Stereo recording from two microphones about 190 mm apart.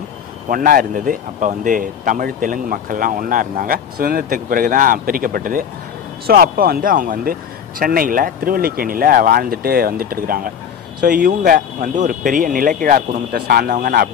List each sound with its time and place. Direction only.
0.5 s speech: 50° right (ahead or behind)